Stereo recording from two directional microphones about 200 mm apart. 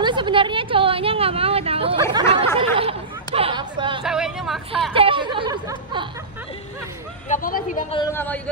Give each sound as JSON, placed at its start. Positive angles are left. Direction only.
{"t": 0.0, "sound": "a woman's voice", "side_deg": -25}
{"t": 4.0, "sound": "speech", "side_deg": -5}
{"t": 4.9, "sound": "speech", "side_deg": -25}
{"t": 7.2, "sound": "speech", "side_deg": 45}
{"t": 8.1, "sound": "a man's voice", "side_deg": 10}